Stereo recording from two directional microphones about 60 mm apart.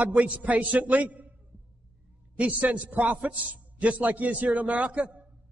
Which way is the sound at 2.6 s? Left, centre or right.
Right.